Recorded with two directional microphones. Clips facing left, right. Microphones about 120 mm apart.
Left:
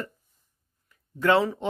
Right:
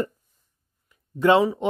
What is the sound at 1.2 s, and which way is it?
Speech, 15° right (ahead or behind).